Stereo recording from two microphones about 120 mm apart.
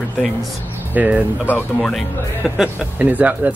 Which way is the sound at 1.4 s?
15° left (ahead or behind).